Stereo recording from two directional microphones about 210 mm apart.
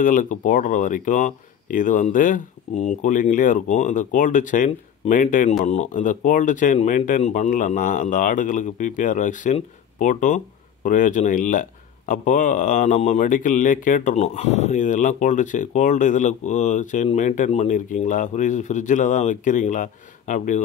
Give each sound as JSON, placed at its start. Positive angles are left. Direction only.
{"t": 0.0, "sound": "a man's voice", "side_deg": 40}